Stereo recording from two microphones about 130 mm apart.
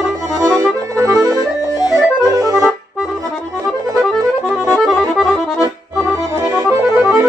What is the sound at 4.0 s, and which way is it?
Accordion, 5° right (ahead or behind).